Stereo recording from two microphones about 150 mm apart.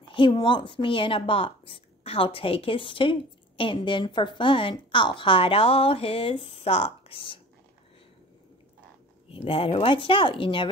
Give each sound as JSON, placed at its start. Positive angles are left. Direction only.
{"t": 0.1, "sound": "a woman's voice", "side_deg": 35}
{"t": 9.3, "sound": "a woman's voice", "side_deg": 40}